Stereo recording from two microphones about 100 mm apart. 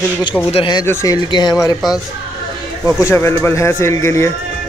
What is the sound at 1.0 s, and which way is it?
Speech, 40° left (ahead or behind).